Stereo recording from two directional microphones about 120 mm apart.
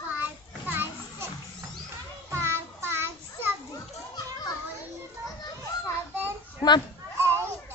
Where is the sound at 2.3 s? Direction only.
20° right (ahead or behind).